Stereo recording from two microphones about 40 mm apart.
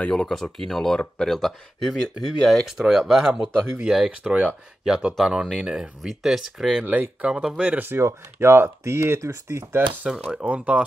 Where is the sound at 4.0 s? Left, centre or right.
Right.